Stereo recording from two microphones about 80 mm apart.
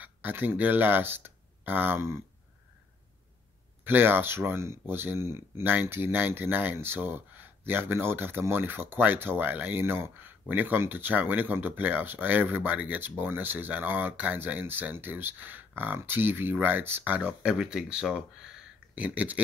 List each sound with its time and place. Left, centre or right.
0.0 s speech: right
3.8 s speech: right